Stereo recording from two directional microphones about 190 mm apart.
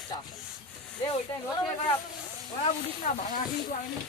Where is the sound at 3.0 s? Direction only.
40° left (ahead or behind).